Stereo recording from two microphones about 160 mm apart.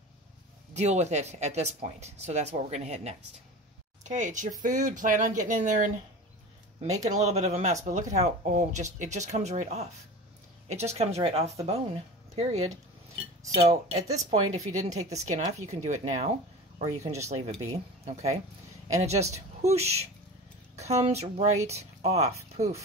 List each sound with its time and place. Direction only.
0.7 s speech: 45° right (ahead or behind)